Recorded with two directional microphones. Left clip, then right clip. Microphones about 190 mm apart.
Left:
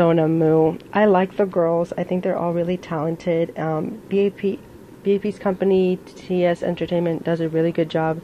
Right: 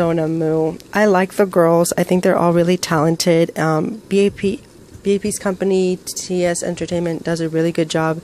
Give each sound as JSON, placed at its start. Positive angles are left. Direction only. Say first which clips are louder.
{"t": 0.0, "sound": "speech", "louder": "left 1 dB", "side_deg": -15}